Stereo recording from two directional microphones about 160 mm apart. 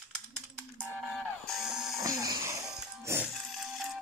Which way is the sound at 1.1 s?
Centre (ahead or behind).